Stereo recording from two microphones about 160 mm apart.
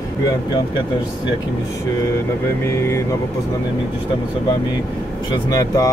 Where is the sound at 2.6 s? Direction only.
15° left (ahead or behind).